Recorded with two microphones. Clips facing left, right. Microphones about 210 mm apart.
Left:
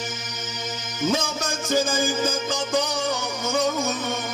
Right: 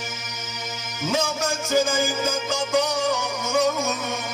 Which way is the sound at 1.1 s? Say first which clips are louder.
Right 1 dB; 35° left (ahead or behind).